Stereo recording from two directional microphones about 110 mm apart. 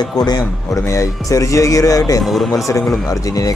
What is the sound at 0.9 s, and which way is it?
Speech, 30° left (ahead or behind).